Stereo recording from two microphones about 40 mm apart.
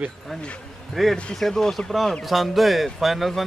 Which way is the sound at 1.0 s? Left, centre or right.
Centre.